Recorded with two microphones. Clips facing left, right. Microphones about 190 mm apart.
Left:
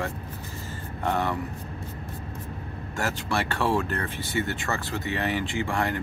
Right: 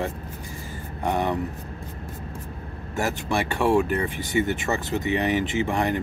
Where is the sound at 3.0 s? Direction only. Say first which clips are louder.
Right 3 dB; 15° right (ahead or behind).